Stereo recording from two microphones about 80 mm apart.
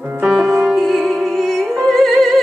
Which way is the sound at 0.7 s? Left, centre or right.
Centre.